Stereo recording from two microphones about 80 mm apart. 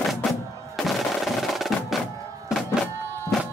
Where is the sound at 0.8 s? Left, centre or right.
Centre.